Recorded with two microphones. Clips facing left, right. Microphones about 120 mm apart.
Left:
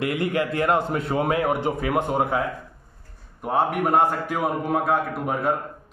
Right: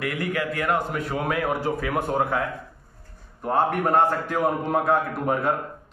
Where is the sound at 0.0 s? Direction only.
25° left (ahead or behind).